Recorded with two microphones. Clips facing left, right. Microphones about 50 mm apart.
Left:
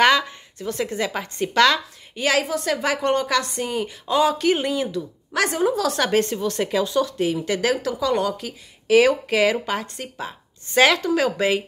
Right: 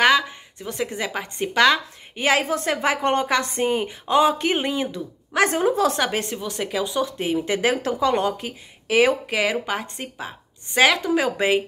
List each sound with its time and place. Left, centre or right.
0.6 s speech: centre
2.1 s speech: right
5.9 s speech: centre
6.8 s speech: centre
8.8 s speech: centre
11.1 s speech: right